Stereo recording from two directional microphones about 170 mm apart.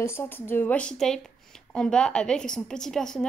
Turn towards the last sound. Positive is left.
turn(degrees=5)  # may be behind; listen again after turning